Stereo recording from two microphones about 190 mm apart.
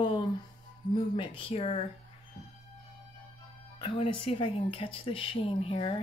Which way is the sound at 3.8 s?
30° left (ahead or behind).